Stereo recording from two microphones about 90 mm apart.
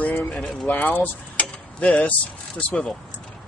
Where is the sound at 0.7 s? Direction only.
20° left (ahead or behind).